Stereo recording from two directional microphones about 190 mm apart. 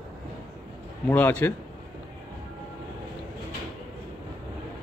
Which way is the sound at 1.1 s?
10° left (ahead or behind).